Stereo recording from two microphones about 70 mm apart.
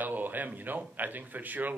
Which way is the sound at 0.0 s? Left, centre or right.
Right.